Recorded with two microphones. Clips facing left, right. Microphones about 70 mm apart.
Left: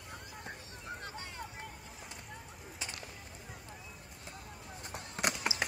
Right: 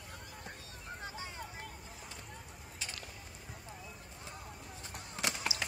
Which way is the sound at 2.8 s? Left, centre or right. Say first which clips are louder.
Left 1 dB; left.